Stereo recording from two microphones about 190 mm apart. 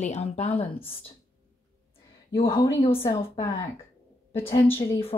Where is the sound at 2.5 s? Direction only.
15° left (ahead or behind).